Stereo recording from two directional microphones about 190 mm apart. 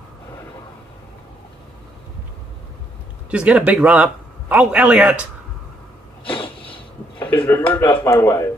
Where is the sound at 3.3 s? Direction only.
5° right (ahead or behind).